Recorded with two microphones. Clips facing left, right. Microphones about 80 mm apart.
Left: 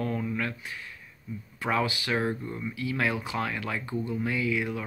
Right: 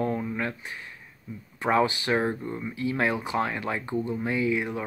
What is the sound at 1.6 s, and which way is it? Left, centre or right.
Speech, right.